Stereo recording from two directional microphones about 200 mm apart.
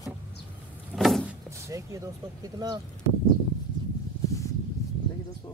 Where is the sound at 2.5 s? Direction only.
20° right (ahead or behind).